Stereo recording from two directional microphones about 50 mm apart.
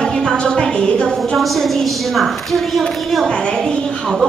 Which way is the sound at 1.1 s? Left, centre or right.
Centre.